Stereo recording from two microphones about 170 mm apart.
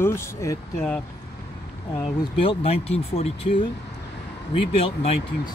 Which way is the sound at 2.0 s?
30° left (ahead or behind).